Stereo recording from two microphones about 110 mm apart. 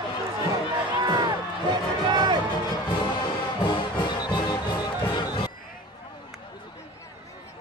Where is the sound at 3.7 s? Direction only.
40° left (ahead or behind).